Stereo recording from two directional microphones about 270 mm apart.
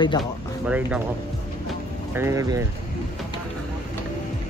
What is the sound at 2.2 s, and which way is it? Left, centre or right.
Speech, centre.